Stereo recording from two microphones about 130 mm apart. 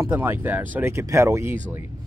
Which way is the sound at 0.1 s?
15° right (ahead or behind).